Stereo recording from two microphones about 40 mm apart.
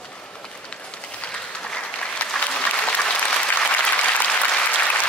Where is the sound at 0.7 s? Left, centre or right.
Left.